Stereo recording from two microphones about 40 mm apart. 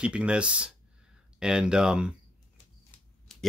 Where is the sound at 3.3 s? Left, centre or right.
Centre.